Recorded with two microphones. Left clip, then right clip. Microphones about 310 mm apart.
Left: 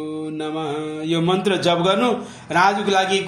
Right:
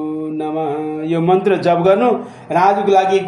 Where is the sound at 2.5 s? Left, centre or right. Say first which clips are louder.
Right 5 dB; left.